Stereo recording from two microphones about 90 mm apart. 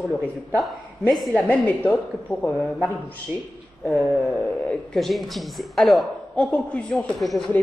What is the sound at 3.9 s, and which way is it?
A woman's voice, 5° left (ahead or behind).